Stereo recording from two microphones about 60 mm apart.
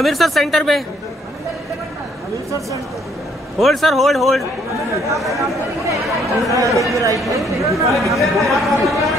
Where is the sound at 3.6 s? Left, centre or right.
Centre.